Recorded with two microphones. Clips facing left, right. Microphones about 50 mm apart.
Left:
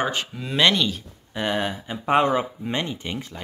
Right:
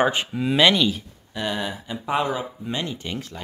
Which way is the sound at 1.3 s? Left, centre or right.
Left.